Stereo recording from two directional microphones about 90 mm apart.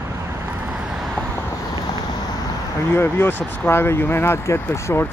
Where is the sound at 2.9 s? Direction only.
25° left (ahead or behind).